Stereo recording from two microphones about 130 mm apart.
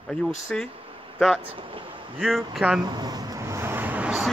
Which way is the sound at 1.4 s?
45° right (ahead or behind).